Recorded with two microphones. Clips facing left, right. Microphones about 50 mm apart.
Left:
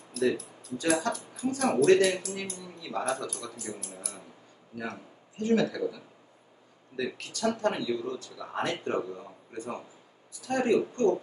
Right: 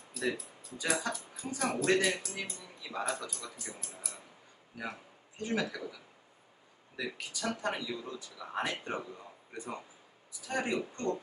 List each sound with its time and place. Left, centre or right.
0.1 s speech: centre
5.4 s speech: centre
5.8 s speech: centre
7.0 s speech: centre